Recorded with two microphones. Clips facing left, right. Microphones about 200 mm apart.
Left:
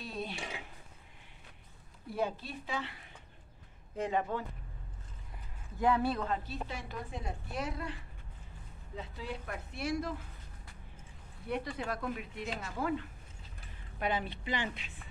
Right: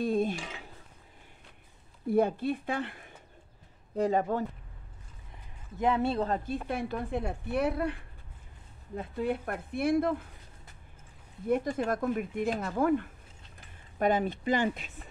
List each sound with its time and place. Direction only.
0.0 s dishes: 50° right (ahead or behind)
2.0 s a woman's voice: 55° right (ahead or behind)
3.9 s speech: 35° right (ahead or behind)
5.8 s speech: 20° right (ahead or behind)
6.2 s a woman's voice: 45° right (ahead or behind)
11.4 s speech: 45° right (ahead or behind)